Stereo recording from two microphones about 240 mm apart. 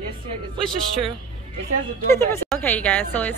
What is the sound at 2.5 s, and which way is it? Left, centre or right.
Speech, centre.